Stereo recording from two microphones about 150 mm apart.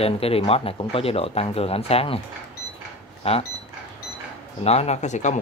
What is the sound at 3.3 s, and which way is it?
Speech, 45° left (ahead or behind).